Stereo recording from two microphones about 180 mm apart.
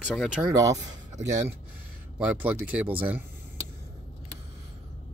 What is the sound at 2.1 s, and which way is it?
Speech, 10° right (ahead or behind).